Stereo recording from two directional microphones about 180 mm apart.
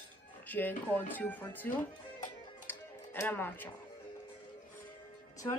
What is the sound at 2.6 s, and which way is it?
Music, 10° left (ahead or behind).